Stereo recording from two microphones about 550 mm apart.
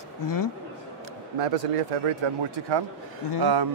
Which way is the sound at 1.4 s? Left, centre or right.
Right.